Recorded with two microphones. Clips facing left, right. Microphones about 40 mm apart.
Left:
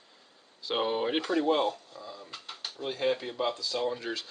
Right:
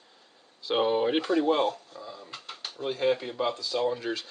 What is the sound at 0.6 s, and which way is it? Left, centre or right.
Speech, centre.